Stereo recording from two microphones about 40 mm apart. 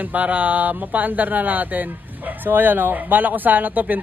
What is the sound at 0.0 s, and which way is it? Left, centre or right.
Speech, right.